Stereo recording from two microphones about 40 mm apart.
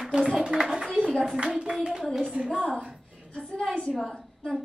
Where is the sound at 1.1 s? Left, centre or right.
Centre.